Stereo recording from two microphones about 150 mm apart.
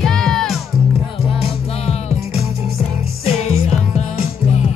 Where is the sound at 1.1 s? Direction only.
40° left (ahead or behind).